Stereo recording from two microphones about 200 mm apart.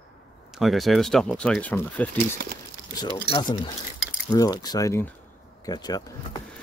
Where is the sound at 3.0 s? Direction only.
20° left (ahead or behind).